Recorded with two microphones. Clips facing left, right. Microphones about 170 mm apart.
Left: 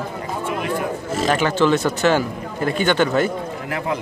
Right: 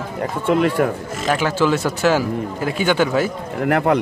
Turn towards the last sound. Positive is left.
turn(degrees=-65)  # may be behind; listen again after turning